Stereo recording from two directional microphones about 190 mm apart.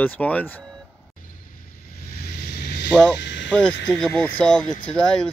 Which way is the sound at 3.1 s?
65° left (ahead or behind).